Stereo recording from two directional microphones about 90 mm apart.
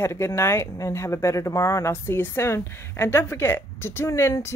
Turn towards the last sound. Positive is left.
turn(degrees=30)  # may be behind; listen again after turning